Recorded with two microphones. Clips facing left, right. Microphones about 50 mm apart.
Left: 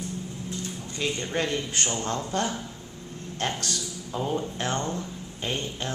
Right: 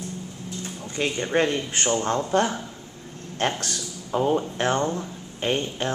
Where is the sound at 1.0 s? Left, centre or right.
Right.